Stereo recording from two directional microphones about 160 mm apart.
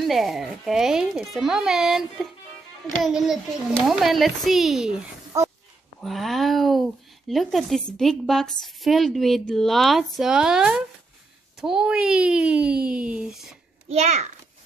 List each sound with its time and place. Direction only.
0.0 s speech: centre (ahead or behind)
5.3 s a sound: 20° right (ahead or behind)
5.9 s a child's voice: centre (ahead or behind)
13.8 s a child's voice: 40° right (ahead or behind)